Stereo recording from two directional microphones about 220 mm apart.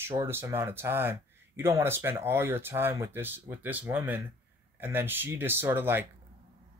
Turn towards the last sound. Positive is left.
turn(degrees=-10)  # may be behind; listen again after turning